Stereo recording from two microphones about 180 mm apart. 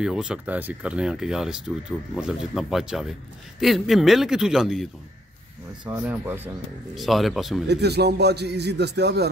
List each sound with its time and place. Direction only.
0.0 s speech: 5° right (ahead or behind)
6.0 s speech: 10° right (ahead or behind)
7.0 s speech: centre (ahead or behind)
7.6 s a man's voice: 65° right (ahead or behind)